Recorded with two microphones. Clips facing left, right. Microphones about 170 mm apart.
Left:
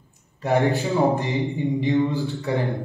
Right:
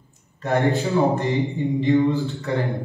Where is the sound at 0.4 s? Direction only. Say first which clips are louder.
Even; 15° left (ahead or behind).